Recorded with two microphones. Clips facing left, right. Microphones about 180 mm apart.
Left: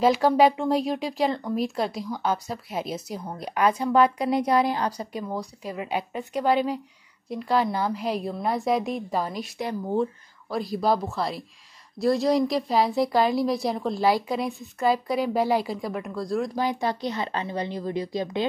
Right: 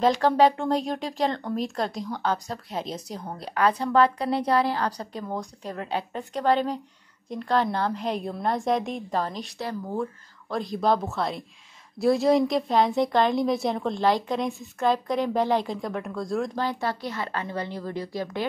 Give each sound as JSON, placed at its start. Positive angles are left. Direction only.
{"t": 0.0, "sound": "a woman's voice", "side_deg": 10}
{"t": 10.5, "sound": "speech", "side_deg": 5}
{"t": 16.5, "sound": "a woman's voice", "side_deg": 15}